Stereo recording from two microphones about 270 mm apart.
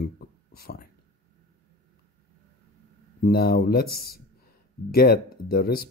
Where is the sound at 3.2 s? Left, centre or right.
Left.